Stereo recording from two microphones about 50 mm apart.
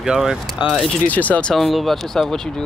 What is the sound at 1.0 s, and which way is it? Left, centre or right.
Speech, left.